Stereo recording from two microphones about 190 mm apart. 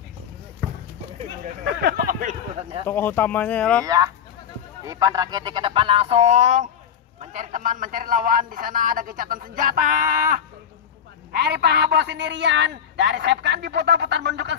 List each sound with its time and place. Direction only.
1.4 s a sound: 55° right (ahead or behind)
2.9 s speech: 10° left (ahead or behind)
3.8 s a man's voice: 20° right (ahead or behind); by 14.6 s 65° right (ahead or behind)